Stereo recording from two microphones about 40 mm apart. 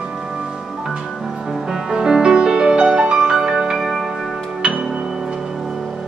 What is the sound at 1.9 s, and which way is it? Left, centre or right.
Music, centre.